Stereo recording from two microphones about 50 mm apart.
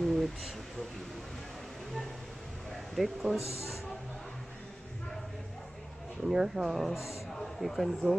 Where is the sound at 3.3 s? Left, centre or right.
Left.